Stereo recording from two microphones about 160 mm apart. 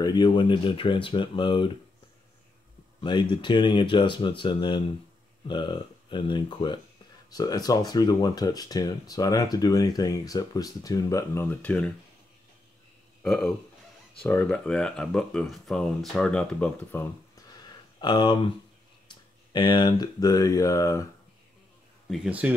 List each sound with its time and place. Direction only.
0.0 s speech: 25° left (ahead or behind)
3.0 s speech: 30° left (ahead or behind); by 11.9 s 10° left (ahead or behind)
13.2 s speech: centre (ahead or behind)
17.6 s a sound: 25° left (ahead or behind)
19.0 s speech: 30° left (ahead or behind)
22.1 s speech: 5° right (ahead or behind)